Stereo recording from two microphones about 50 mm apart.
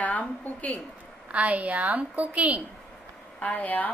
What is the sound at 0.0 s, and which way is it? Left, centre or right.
Speech, left.